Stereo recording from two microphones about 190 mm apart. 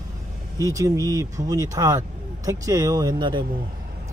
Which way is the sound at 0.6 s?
20° right (ahead or behind).